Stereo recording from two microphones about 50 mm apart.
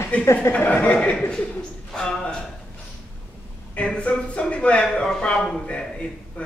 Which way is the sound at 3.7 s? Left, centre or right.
Left.